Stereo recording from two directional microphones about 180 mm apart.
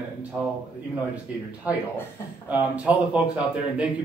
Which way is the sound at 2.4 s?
10° right (ahead or behind).